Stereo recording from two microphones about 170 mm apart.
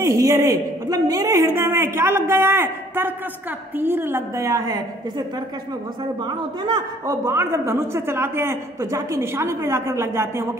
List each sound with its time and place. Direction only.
0.0 s a woman's voice: 20° right (ahead or behind)
6.6 s a woman's voice: 20° right (ahead or behind)